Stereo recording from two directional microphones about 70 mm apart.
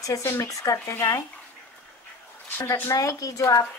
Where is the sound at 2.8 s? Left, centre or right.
Left.